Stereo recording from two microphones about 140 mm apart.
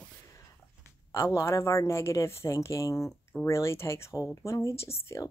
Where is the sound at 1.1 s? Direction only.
20° left (ahead or behind).